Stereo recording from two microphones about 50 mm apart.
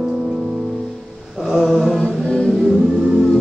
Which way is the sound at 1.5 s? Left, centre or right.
Centre.